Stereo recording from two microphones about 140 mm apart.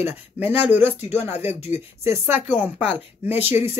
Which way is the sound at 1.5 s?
50° left (ahead or behind).